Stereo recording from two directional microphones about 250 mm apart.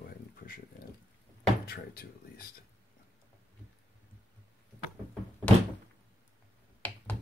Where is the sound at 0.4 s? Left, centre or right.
Left.